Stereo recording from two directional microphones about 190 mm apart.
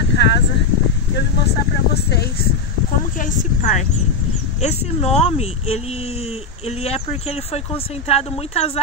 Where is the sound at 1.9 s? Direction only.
55° left (ahead or behind).